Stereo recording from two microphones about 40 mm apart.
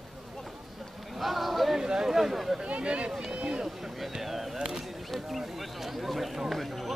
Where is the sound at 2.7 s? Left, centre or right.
Right.